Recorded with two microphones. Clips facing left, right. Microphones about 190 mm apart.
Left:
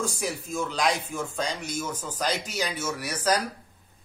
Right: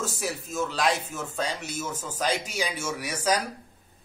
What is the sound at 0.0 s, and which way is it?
Speech, 5° right (ahead or behind).